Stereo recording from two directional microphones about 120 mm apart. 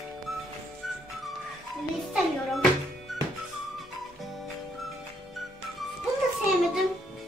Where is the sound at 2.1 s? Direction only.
Centre (ahead or behind).